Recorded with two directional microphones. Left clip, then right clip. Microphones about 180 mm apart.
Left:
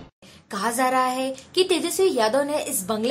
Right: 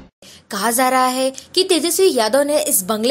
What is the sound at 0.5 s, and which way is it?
A woman's voice, 25° right (ahead or behind).